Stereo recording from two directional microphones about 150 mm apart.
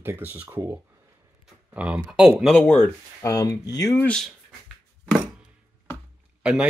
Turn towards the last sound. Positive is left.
turn(degrees=-5)  # may be behind; listen again after turning